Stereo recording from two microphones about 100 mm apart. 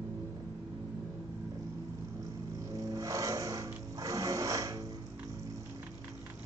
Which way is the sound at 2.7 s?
35° right (ahead or behind).